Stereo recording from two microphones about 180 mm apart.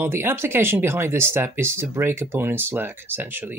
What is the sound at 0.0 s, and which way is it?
Speech, 15° right (ahead or behind).